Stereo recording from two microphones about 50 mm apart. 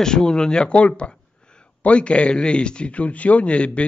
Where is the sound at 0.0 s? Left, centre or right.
Centre.